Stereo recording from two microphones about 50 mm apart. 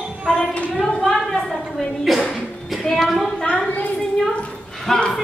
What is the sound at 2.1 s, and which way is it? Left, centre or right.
Speech, centre.